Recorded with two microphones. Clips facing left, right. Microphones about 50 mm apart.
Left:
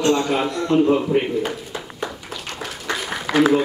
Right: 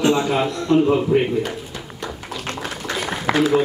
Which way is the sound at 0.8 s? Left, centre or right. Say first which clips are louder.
Left 1 dB; centre.